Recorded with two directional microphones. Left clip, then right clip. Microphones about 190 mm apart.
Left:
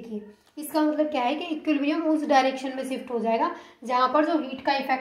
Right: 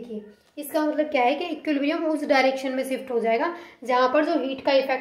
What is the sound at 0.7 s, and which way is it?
A woman's voice, 35° right (ahead or behind).